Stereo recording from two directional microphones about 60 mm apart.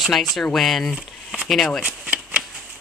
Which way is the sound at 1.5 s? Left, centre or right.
Centre.